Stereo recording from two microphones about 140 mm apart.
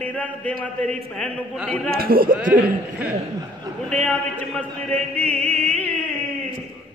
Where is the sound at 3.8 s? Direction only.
10° left (ahead or behind).